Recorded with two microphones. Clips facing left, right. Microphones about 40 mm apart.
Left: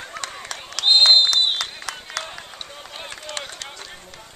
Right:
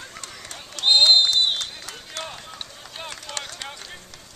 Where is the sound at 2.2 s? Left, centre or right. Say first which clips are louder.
Left 1 dB; centre.